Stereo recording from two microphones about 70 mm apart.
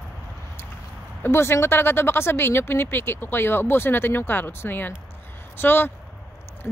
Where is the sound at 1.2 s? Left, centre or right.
Left.